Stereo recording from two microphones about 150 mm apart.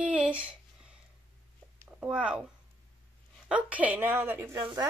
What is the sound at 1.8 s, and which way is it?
Speech, 10° right (ahead or behind).